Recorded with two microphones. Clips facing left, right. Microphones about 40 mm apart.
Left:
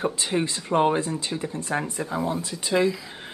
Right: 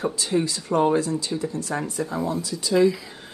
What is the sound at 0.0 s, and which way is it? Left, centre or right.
Speech, left.